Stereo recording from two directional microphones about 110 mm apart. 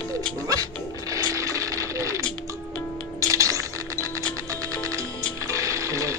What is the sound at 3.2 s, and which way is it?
Coin, 30° right (ahead or behind).